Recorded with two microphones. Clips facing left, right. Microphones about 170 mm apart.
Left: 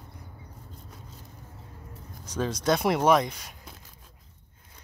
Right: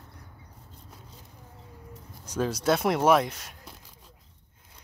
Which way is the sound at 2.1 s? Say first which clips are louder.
Right 1 dB; 5° right (ahead or behind).